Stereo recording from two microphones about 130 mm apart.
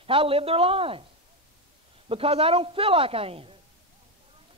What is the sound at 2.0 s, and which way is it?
A woman's voice, 45° right (ahead or behind).